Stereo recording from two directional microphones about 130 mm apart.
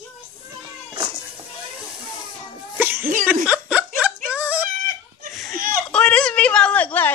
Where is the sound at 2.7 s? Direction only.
15° right (ahead or behind).